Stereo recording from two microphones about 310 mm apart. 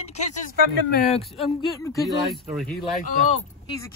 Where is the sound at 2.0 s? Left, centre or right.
Centre.